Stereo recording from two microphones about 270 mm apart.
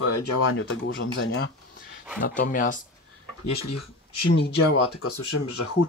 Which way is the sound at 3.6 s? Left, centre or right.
Left.